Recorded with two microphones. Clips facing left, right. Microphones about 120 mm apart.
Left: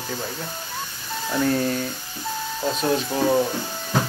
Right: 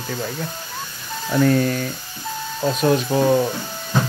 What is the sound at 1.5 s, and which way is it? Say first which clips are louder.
Speech: right 3 dB; 20° left (ahead or behind).